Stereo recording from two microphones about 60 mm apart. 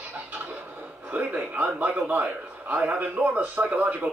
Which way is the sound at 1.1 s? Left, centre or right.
Right.